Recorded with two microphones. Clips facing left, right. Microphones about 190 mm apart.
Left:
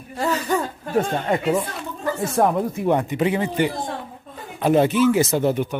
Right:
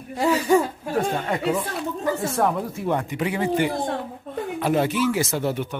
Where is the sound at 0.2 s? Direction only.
10° right (ahead or behind).